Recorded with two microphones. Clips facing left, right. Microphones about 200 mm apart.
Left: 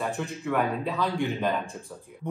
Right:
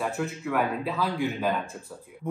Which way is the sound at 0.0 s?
5° right (ahead or behind).